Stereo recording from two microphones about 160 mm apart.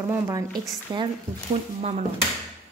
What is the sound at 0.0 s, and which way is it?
Speech, 20° right (ahead or behind).